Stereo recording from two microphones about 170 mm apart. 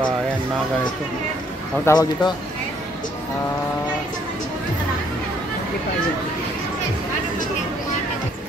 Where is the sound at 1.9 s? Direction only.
20° left (ahead or behind).